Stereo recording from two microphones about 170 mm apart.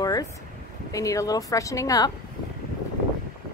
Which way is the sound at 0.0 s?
20° left (ahead or behind).